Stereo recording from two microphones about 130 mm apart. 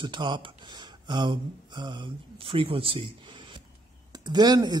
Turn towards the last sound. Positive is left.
turn(degrees=-35)  # may be behind; listen again after turning